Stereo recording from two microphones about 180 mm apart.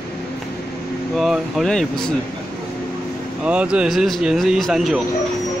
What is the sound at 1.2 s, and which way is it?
Speech, centre (ahead or behind).